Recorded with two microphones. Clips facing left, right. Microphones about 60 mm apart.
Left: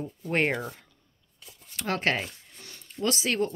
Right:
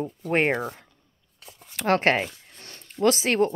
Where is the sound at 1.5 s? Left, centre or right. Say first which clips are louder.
Right 8 dB; right.